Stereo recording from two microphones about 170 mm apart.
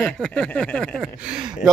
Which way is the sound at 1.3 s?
25° right (ahead or behind).